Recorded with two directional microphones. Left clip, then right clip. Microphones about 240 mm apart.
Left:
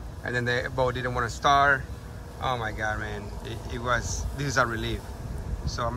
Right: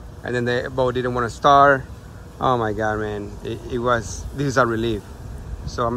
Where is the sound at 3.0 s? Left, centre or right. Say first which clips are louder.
Right 8 dB; centre.